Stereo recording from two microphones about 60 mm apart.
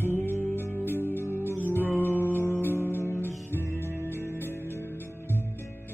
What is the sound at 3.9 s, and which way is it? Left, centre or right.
Music, right.